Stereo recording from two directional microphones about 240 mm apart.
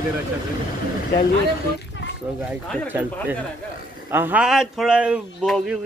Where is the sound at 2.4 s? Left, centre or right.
Centre.